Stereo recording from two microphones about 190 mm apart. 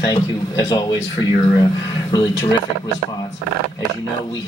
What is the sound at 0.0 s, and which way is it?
Speech, 20° left (ahead or behind).